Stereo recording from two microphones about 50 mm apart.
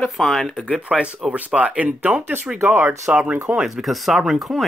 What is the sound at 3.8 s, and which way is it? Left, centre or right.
Speech, centre.